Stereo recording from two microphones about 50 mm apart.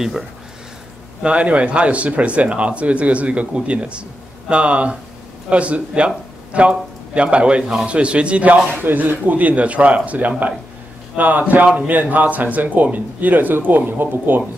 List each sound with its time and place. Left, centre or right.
1.2 s speech: right
8.8 s speech: right